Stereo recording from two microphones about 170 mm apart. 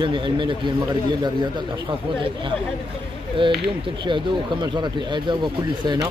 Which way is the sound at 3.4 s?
30° right (ahead or behind).